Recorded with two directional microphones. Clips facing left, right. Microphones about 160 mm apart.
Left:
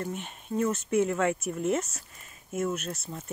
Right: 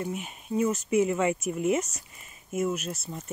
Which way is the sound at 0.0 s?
5° right (ahead or behind).